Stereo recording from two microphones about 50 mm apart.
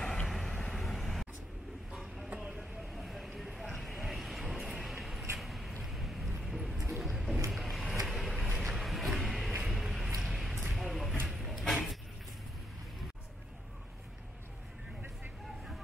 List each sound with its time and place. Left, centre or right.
0.3 s vehicle: centre
2.2 s vehicle: right
2.5 s vehicle: centre
5.4 s a sound: centre
7.5 s vehicle: centre
8.5 s a sound: centre